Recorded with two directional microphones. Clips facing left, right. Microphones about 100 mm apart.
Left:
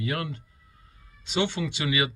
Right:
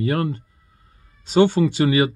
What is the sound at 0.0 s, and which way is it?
Speech, 40° right (ahead or behind).